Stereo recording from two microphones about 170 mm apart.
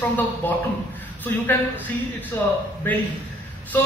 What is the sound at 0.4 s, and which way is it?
Speech, 10° left (ahead or behind).